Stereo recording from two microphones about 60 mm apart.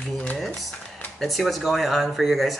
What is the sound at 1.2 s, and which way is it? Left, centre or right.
Speech, centre.